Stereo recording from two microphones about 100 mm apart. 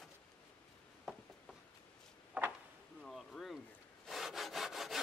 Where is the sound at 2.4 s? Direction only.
20° right (ahead or behind).